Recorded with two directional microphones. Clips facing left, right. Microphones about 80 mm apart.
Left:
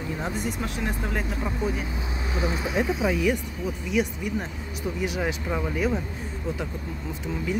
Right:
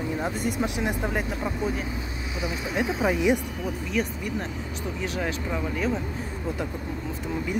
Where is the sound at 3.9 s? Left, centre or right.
Centre.